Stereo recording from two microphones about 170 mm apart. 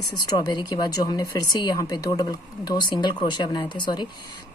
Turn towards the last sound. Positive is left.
turn(degrees=25)  # may be behind; listen again after turning